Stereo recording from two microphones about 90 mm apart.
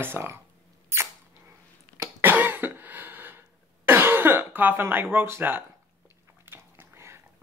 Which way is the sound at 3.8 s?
25° right (ahead or behind).